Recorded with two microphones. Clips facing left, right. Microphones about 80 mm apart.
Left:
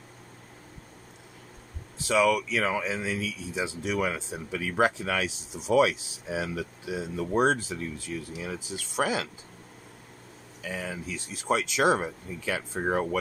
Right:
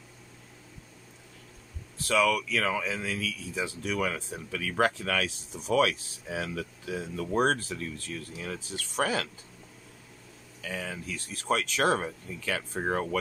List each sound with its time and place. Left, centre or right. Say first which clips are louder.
2.0 s speech: left 2 dB; centre
10.6 s speech: left 2 dB; centre